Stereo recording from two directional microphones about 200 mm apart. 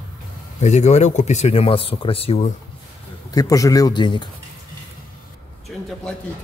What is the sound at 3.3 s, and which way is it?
Speech, 20° left (ahead or behind).